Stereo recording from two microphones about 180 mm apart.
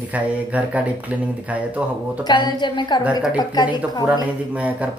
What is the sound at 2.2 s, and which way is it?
A woman's voice, 25° left (ahead or behind).